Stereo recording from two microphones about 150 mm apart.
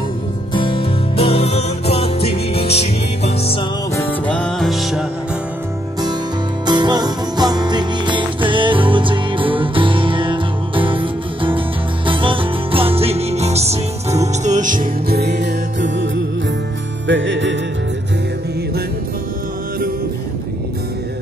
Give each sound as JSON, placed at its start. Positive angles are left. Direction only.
{"t": 0.6, "sound": "music", "side_deg": 35}
{"t": 3.9, "sound": "music", "side_deg": 10}
{"t": 6.6, "sound": "music", "side_deg": -30}